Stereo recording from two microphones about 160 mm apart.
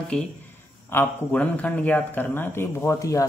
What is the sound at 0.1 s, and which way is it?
A man's voice, 5° left (ahead or behind).